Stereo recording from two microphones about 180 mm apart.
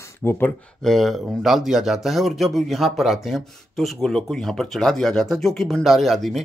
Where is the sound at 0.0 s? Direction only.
15° left (ahead or behind).